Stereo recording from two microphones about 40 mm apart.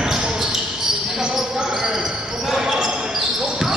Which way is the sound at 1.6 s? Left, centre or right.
Centre.